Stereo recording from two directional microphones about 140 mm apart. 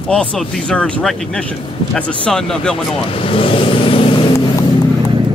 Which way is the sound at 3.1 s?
40° left (ahead or behind).